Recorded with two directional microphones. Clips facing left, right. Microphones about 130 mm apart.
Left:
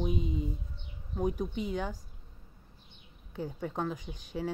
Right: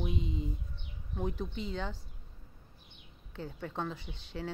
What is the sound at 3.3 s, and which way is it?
Speech, 15° left (ahead or behind).